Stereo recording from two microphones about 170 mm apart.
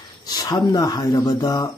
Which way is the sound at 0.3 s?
25° left (ahead or behind).